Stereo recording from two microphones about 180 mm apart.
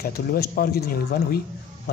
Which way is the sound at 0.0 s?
60° left (ahead or behind).